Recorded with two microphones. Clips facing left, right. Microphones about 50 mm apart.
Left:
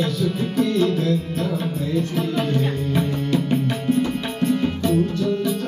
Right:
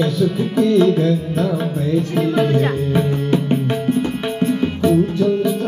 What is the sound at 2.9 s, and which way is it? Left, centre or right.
Music, right.